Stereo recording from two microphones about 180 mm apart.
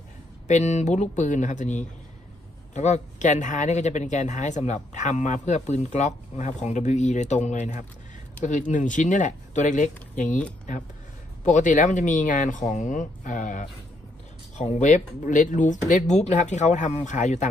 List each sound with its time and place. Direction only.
0.5 s speech: 40° left (ahead or behind)
11.4 s speech: 45° left (ahead or behind)